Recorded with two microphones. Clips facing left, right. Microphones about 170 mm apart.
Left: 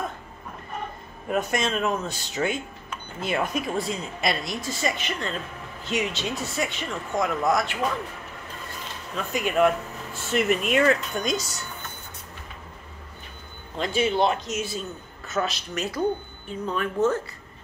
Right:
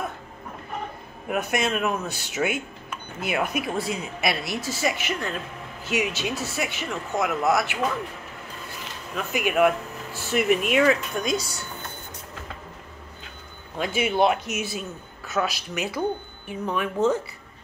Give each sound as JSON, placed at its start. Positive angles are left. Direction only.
{"t": 1.3, "sound": "speech", "side_deg": -5}
{"t": 9.1, "sound": "speech", "side_deg": -10}
{"t": 13.7, "sound": "a man's voice", "side_deg": -10}